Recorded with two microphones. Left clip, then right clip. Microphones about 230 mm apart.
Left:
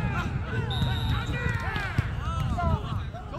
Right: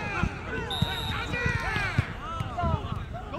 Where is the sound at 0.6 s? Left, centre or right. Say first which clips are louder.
Right 2 dB; right.